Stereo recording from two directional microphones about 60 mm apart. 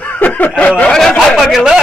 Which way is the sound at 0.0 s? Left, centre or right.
Left.